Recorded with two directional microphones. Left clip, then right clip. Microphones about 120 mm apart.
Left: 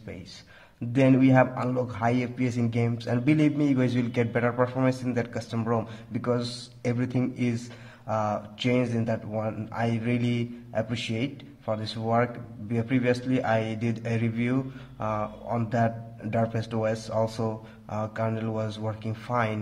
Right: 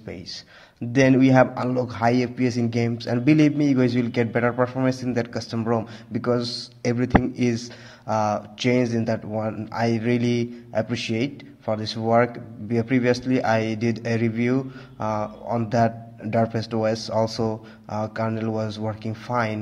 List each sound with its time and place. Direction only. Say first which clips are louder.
0.9 s a man's voice: right 4 dB; 30° right (ahead or behind)
17.8 s speech: right 3 dB; 15° right (ahead or behind)